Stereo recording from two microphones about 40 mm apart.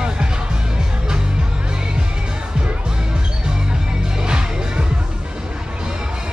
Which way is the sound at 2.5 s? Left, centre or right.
Right.